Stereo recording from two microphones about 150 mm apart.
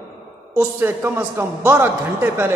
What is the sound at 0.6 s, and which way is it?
A man's voice, 15° right (ahead or behind).